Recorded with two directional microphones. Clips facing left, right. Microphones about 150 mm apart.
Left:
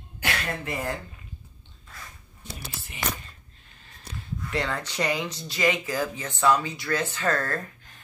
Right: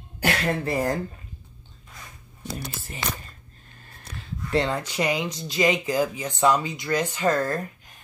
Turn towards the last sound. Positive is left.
turn(degrees=-15)  # may be behind; listen again after turning